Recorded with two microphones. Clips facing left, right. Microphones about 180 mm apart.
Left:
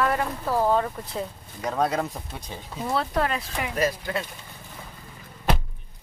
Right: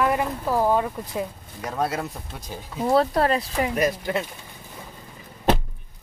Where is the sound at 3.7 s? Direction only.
20° right (ahead or behind).